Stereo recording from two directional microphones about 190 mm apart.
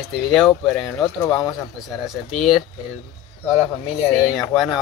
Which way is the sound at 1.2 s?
20° left (ahead or behind).